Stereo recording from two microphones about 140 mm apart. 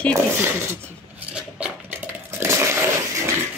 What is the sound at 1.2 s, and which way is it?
Cutlery, 10° right (ahead or behind).